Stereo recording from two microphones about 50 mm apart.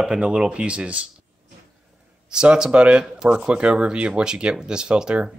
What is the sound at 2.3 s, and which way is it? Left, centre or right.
Speech, centre.